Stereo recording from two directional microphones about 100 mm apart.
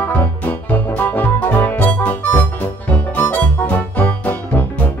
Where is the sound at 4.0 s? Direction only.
20° left (ahead or behind).